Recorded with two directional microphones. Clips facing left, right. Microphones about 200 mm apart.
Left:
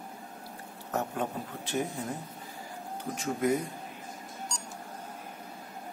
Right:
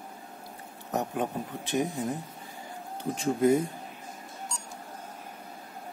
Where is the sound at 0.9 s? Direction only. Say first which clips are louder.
Right 2 dB; 15° right (ahead or behind).